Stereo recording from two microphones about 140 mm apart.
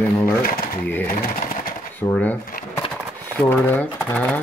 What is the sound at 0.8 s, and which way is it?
Speech, 15° left (ahead or behind).